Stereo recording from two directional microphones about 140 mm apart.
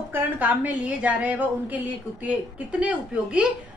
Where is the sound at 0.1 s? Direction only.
10° right (ahead or behind).